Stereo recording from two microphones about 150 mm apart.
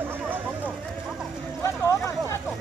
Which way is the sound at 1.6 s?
20° left (ahead or behind).